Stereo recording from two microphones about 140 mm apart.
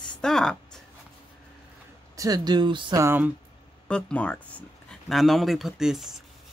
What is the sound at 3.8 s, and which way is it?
Speech, 10° left (ahead or behind).